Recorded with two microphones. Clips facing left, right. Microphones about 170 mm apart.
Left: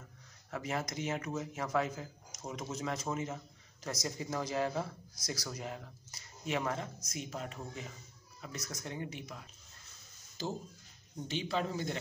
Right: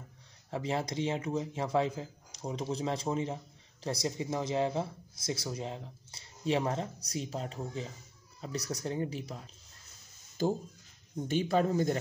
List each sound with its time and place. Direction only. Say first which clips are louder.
0.5 s a man's voice: right 4 dB; 25° right (ahead or behind)
10.4 s speech: right 8 dB; 50° right (ahead or behind)